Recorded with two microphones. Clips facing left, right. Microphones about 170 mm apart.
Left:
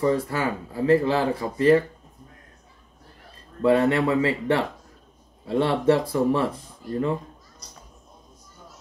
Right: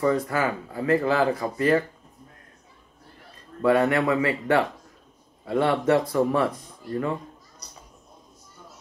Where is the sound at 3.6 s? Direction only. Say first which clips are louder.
Left 1 dB; 30° left (ahead or behind).